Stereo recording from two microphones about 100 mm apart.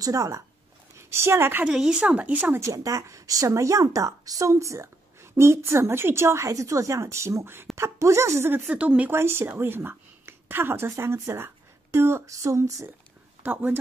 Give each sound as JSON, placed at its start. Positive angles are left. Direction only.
{"t": 0.0, "sound": "a woman's voice", "side_deg": -35}
{"t": 1.6, "sound": "speech", "side_deg": -5}
{"t": 2.6, "sound": "a woman's voice", "side_deg": -30}
{"t": 8.6, "sound": "speech", "side_deg": -15}
{"t": 9.1, "sound": "a woman's voice", "side_deg": -25}
{"t": 13.4, "sound": "speech", "side_deg": -15}